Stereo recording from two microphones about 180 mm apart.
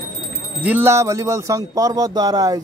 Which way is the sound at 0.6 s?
10° right (ahead or behind).